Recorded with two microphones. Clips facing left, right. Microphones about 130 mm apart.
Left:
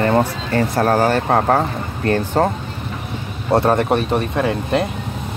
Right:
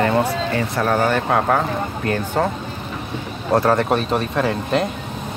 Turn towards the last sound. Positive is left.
turn(degrees=20)  # may be behind; listen again after turning